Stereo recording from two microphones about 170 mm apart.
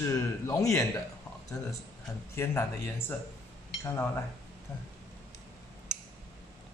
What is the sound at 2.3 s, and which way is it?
Speech, 15° left (ahead or behind).